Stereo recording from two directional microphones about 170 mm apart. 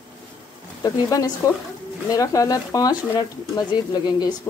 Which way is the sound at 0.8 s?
20° left (ahead or behind).